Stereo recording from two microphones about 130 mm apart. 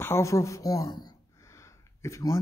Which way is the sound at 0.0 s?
20° left (ahead or behind).